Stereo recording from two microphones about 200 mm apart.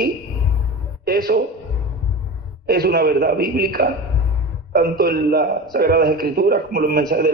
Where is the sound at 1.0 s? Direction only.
50° right (ahead or behind).